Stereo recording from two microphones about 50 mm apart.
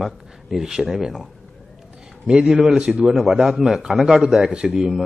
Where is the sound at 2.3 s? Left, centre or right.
Centre.